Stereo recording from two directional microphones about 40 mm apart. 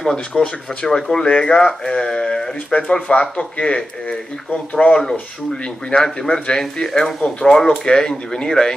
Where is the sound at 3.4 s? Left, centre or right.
Left.